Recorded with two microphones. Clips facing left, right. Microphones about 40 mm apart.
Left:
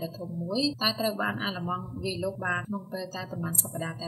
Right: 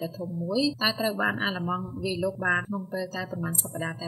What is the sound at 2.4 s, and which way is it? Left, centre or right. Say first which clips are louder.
Speech: right 5 dB; right.